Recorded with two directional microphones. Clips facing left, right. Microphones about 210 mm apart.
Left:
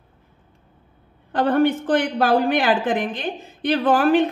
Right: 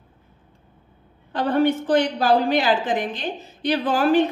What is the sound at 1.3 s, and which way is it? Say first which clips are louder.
A woman's voice: left 2 dB; 50° left (ahead or behind).